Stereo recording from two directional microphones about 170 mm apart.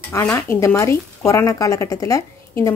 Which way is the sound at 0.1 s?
15° left (ahead or behind).